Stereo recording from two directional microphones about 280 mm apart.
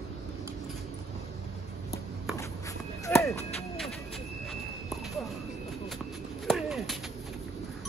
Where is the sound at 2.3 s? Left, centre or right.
Centre.